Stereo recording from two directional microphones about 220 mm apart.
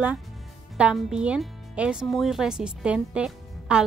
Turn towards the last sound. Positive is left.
turn(degrees=-5)  # may be behind; listen again after turning